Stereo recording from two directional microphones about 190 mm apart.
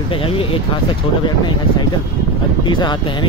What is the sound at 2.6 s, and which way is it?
Speech, 25° left (ahead or behind).